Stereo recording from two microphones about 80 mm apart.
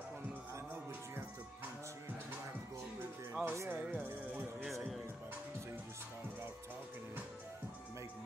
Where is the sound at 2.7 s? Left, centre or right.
Right.